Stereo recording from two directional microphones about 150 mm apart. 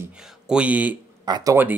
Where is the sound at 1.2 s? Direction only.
25° right (ahead or behind).